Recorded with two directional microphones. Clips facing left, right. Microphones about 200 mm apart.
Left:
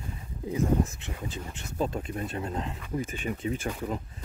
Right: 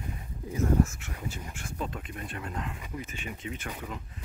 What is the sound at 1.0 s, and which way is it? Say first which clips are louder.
Speech: left 2 dB; 20° left (ahead or behind).